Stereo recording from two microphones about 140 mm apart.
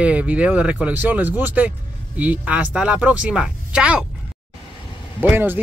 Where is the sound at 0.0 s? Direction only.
10° right (ahead or behind).